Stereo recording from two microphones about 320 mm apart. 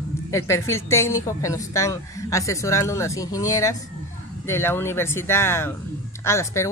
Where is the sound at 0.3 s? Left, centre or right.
Centre.